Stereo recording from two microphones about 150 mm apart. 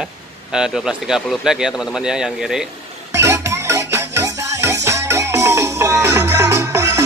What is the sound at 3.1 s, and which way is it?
Music, 20° right (ahead or behind).